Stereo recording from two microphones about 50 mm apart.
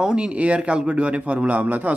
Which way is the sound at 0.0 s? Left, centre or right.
Centre.